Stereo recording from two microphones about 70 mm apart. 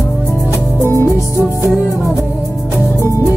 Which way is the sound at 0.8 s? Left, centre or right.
Left.